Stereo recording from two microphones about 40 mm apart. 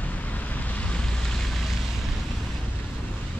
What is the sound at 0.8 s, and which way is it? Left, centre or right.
Waves, left.